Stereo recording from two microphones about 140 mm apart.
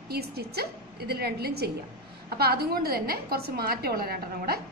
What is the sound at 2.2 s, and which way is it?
A woman's voice, 90° right.